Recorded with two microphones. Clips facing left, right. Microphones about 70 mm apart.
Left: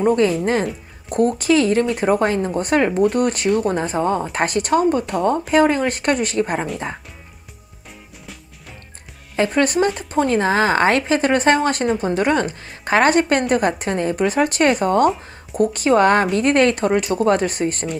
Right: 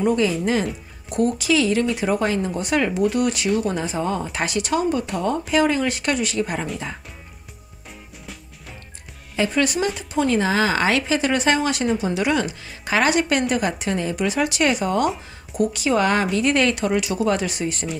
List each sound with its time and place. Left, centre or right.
0.0 s speech: left
0.7 s music: centre
1.4 s a woman's voice: left
2.9 s speech: centre
3.2 s speech: left
4.0 s speech: left
9.6 s a woman's voice: left